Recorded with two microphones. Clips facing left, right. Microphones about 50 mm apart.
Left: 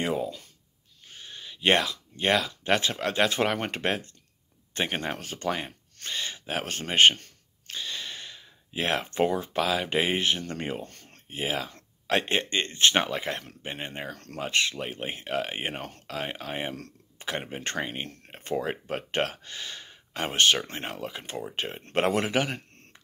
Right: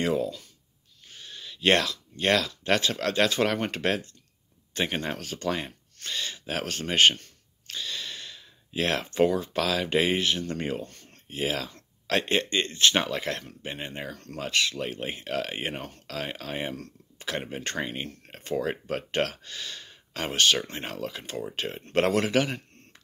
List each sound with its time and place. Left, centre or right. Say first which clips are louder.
0.0 s speech: right 2 dB; left
10.9 s a sound: even; left
11.2 s speech: right 1 dB; left
14.1 s speech: right 1 dB; left
14.4 s speech: even; left